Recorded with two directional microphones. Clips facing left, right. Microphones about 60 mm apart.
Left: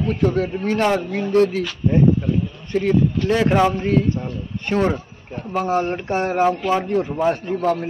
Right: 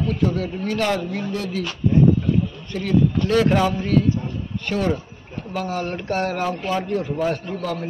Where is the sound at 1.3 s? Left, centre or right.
Left.